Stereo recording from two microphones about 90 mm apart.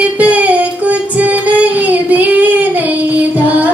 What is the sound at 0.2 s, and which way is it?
Child singing, 15° right (ahead or behind).